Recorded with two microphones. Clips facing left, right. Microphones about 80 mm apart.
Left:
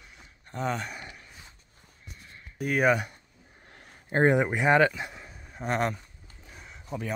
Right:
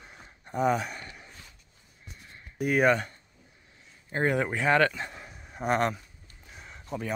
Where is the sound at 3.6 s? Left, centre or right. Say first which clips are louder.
Left 9 dB; left.